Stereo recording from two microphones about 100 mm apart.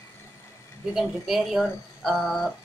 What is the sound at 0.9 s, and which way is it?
Speech, 5° right (ahead or behind).